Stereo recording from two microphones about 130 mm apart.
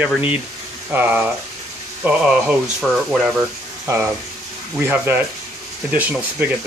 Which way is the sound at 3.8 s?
20° right (ahead or behind).